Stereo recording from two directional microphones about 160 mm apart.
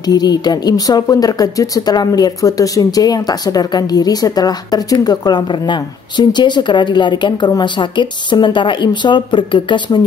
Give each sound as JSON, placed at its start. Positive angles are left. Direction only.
{"t": 0.0, "sound": "speech", "side_deg": 25}